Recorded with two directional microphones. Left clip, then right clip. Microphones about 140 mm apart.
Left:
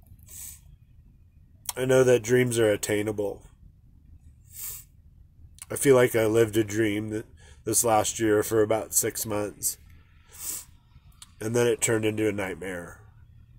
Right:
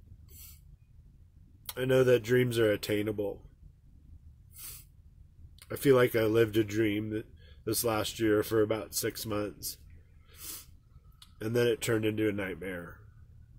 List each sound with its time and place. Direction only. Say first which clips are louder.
1.8 s speech: left 5 dB; 10° right (ahead or behind)
5.6 s speech: left 5 dB; 10° right (ahead or behind)
11.3 s speech: left 4 dB; 20° right (ahead or behind)